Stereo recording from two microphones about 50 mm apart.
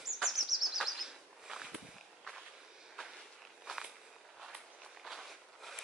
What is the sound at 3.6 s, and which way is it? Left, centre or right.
Walk, centre.